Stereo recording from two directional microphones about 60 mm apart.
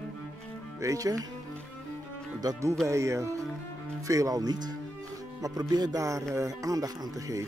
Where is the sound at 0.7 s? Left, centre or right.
Right.